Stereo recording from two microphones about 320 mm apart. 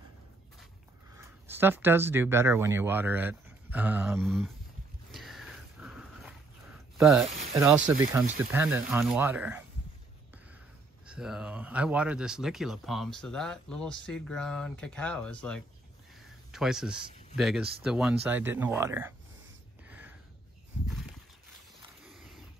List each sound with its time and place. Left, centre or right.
1.1 s speech: centre
5.1 s dog: centre
7.0 s speech: centre
11.1 s speech: centre
16.2 s a sound: centre
17.4 s speech: centre
19.9 s a sound: centre
22.0 s wild animals: centre